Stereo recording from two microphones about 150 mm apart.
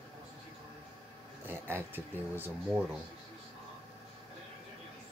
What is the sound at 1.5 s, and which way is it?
Speech, 15° right (ahead or behind).